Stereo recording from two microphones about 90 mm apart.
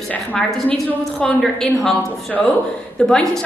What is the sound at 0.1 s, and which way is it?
Speech, 15° left (ahead or behind).